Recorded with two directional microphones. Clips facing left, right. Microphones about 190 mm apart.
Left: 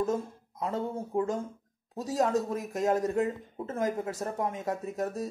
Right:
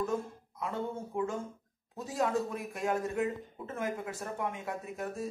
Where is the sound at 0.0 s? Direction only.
40° left (ahead or behind).